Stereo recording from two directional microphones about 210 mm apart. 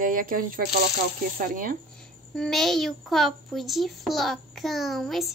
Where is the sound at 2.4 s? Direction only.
Centre (ahead or behind).